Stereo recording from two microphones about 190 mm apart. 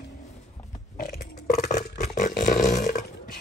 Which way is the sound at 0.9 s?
45° left (ahead or behind).